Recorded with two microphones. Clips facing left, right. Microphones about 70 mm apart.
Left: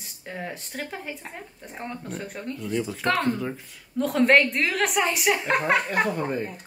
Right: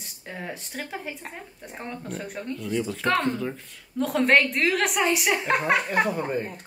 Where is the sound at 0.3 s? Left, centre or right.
Centre.